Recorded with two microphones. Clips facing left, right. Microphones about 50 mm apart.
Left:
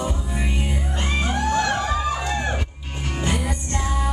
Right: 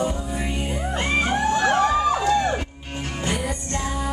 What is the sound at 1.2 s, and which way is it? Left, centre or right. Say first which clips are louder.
Music: even; centre.